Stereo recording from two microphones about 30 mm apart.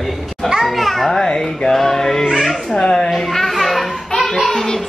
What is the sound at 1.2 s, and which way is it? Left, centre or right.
Music, left.